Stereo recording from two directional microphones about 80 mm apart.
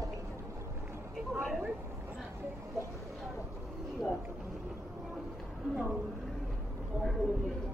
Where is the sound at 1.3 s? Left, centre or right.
Centre.